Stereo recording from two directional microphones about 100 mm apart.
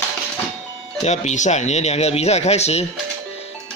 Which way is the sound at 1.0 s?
90° left.